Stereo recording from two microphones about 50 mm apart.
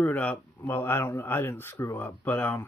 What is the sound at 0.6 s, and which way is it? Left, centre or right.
Speech, left.